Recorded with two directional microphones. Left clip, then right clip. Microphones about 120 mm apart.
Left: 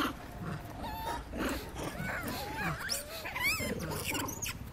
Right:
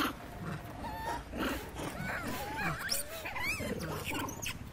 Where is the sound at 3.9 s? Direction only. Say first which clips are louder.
Left 2 dB; 20° left (ahead or behind).